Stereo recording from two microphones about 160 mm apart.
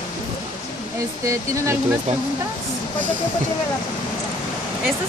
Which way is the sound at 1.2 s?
20° right (ahead or behind).